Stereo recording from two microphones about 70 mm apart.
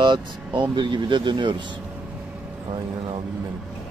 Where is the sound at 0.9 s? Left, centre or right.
Right.